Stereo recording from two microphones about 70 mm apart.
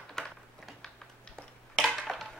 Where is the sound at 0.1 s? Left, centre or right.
Centre.